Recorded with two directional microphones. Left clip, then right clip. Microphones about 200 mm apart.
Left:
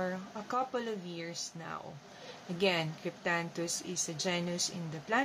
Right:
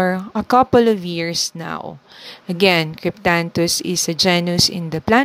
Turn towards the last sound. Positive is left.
turn(degrees=-45)  # may be behind; listen again after turning